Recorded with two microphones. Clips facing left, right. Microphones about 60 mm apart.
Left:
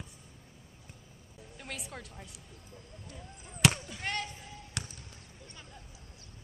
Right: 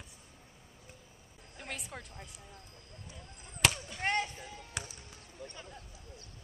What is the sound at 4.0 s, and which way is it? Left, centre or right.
Speech, right.